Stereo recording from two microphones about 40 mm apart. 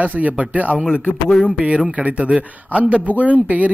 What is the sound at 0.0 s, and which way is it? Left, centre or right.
Speech, right.